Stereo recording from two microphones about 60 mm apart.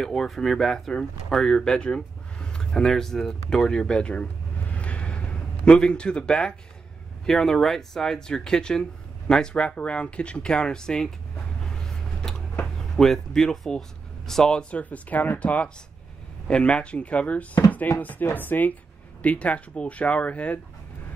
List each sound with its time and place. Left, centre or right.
0.0 s speech: centre
11.6 s a sound: centre
12.9 s speech: centre; by 20.6 s left